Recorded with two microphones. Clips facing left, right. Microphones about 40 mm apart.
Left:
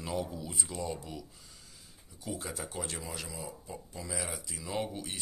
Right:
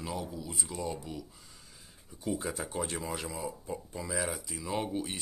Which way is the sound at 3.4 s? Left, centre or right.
Centre.